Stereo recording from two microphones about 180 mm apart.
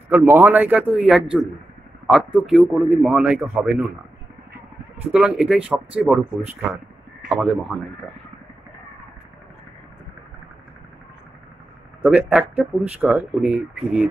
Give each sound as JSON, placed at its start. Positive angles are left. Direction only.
{"t": 0.1, "sound": "a man's voice", "side_deg": -10}
{"t": 5.0, "sound": "a man's voice", "side_deg": -5}
{"t": 12.0, "sound": "speech", "side_deg": -10}